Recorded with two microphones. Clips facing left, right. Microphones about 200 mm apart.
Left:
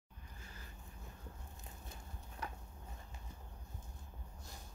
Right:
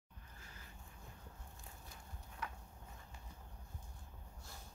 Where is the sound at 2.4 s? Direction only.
35° left (ahead or behind).